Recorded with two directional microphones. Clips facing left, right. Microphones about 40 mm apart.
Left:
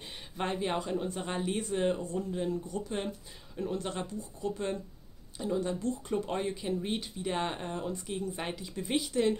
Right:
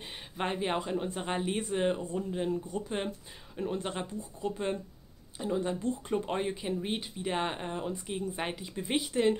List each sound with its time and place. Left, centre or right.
0.0 s speech: right